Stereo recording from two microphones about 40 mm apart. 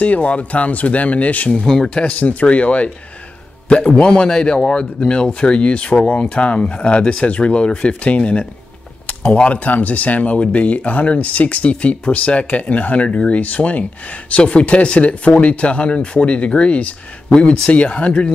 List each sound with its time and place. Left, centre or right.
0.0 s speech: left